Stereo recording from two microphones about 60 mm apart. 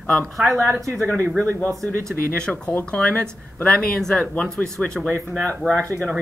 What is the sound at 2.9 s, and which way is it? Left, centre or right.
Speech, left.